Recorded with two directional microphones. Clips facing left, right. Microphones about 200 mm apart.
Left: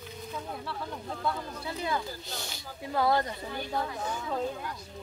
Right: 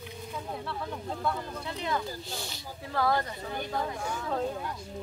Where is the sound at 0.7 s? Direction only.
Centre (ahead or behind).